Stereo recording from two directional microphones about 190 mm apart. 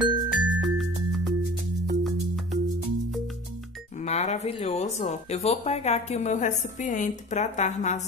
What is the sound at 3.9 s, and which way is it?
Speech, 35° left (ahead or behind).